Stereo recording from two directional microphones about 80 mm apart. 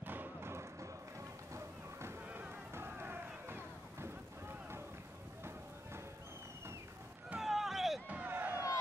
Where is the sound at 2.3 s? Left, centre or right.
Right.